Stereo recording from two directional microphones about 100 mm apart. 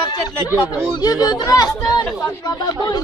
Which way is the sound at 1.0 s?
40° left (ahead or behind).